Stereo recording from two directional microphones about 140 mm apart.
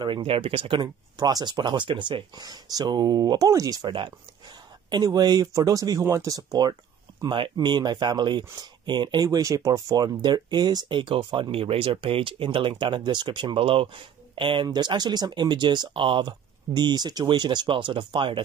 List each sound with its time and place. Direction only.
0.0 s speech: 35° right (ahead or behind)